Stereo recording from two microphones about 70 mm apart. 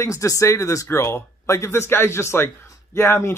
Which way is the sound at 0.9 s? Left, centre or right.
Left.